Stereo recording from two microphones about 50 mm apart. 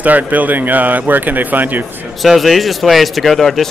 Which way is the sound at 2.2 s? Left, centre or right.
Centre.